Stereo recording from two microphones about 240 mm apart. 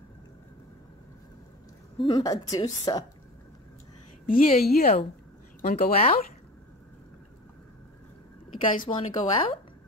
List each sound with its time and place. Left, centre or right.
2.0 s a woman's voice: centre
4.3 s speech: left
8.7 s speech: left